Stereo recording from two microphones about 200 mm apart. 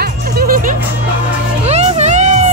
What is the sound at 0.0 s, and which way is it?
Music, 50° right (ahead or behind).